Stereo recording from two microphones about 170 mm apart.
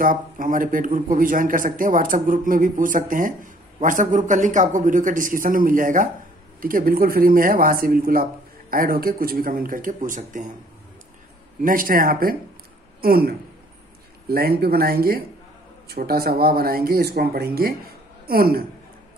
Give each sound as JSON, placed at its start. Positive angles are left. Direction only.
{"t": 0.0, "sound": "a man's voice", "side_deg": -55}
{"t": 11.6, "sound": "a woman's voice", "side_deg": -55}